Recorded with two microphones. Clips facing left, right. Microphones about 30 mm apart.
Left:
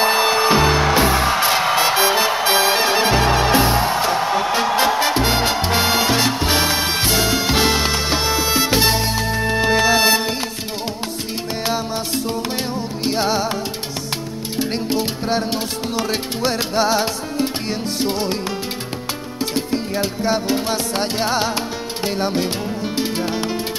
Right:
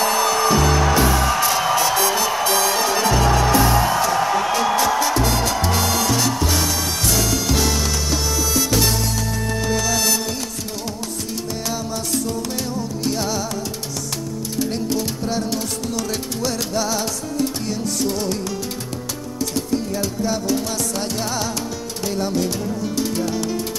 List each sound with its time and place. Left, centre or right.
0.0 s music: left
4.6 s salsa music: left
11.6 s music: left
14.6 s music: left
19.5 s music: left